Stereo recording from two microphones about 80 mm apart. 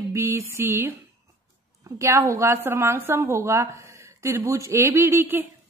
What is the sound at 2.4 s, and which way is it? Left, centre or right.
A woman's voice, right.